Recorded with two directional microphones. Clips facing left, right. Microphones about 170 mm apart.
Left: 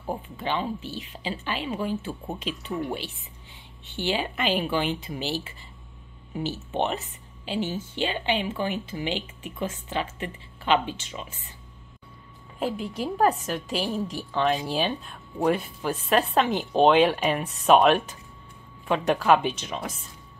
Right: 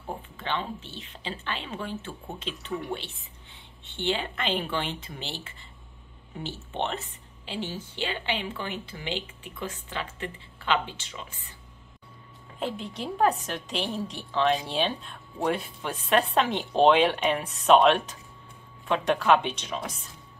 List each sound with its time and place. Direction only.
0.4 s a woman's voice: 10° left (ahead or behind)
4.1 s a woman's voice: 10° left (ahead or behind)
6.8 s a woman's voice: 15° left (ahead or behind)
12.5 s a woman's voice: 5° left (ahead or behind)